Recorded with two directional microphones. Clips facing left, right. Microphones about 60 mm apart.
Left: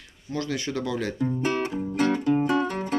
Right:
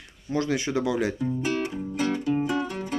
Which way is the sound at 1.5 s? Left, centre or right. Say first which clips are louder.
Left 2 dB; left.